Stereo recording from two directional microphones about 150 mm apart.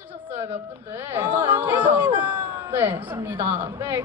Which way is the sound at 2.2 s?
15° right (ahead or behind).